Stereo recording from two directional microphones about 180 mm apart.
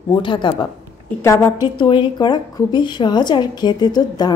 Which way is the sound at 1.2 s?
15° left (ahead or behind).